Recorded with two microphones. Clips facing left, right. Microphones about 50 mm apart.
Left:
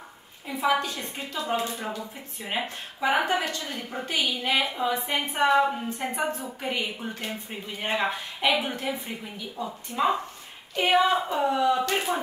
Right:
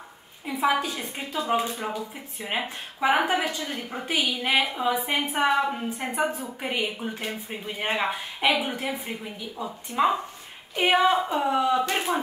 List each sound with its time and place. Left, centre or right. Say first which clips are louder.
0.5 s a woman's voice: right 1 dB; centre
8.1 s a woman's voice: right 1 dB; centre
10.8 s a woman's voice: right 1 dB; centre